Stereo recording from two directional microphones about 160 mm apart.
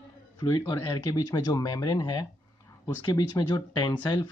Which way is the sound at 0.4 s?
20° left (ahead or behind).